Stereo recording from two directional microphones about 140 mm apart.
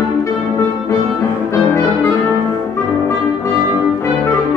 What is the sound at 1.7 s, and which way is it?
Music, 20° left (ahead or behind).